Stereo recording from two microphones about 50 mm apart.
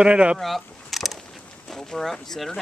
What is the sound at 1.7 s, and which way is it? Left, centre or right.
Speech, centre.